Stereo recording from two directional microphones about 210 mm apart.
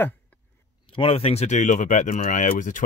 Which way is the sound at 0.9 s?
25° left (ahead or behind).